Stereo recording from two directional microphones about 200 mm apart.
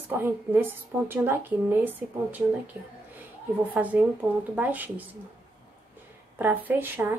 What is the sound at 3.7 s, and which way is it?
Speech, 10° right (ahead or behind).